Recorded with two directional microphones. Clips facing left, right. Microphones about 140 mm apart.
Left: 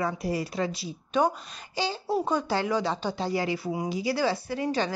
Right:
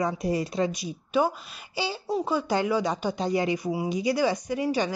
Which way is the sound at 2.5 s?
15° right (ahead or behind).